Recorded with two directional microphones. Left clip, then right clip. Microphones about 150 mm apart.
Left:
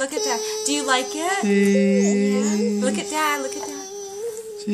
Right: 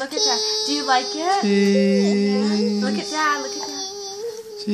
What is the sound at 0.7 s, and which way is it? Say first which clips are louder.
Speech: even; 90° left.